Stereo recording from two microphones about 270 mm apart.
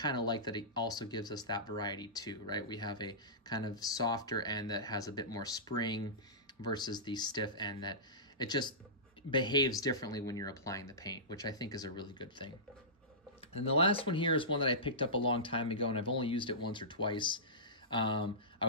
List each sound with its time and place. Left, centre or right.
0.0 s speech: centre